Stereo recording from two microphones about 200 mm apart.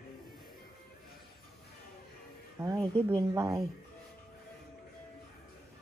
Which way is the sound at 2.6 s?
15° right (ahead or behind).